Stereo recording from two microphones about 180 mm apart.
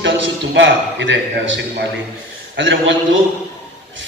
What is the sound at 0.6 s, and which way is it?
A man's voice, 90° right.